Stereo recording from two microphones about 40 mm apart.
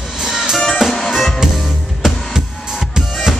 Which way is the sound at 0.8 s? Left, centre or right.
Centre.